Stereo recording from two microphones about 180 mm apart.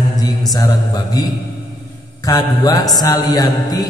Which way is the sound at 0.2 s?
20° left (ahead or behind).